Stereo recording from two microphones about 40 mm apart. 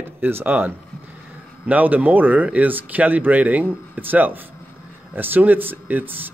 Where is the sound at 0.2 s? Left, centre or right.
Right.